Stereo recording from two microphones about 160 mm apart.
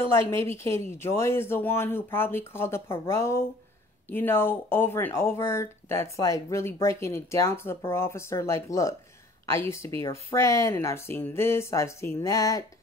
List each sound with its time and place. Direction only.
0.0 s speech: 15° left (ahead or behind)